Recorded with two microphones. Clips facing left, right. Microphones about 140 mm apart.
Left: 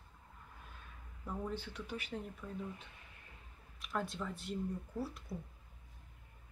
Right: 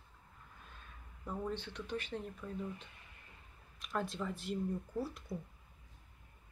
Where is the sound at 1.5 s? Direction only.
10° left (ahead or behind).